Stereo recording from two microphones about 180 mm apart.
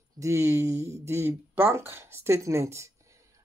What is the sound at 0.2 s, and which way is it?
Speech, 15° right (ahead or behind).